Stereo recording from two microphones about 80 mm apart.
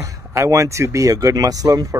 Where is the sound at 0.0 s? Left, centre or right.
Right.